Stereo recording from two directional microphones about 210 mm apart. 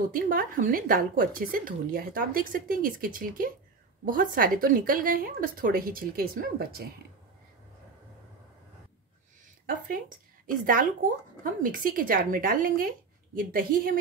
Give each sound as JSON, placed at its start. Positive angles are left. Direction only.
{"t": 0.1, "sound": "a woman's voice", "side_deg": -40}
{"t": 9.7, "sound": "a woman's voice", "side_deg": -40}